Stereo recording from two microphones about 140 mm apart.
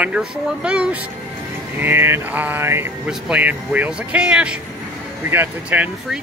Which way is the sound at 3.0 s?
5° right (ahead or behind).